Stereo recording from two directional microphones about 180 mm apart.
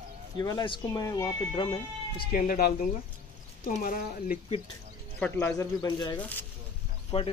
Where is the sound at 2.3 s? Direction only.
55° left (ahead or behind).